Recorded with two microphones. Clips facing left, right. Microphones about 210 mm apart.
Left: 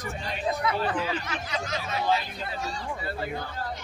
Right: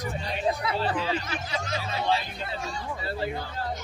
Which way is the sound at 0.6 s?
30° right (ahead or behind).